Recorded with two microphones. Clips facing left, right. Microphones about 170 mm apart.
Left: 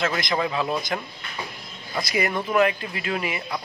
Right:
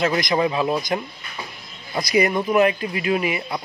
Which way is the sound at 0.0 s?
20° right (ahead or behind).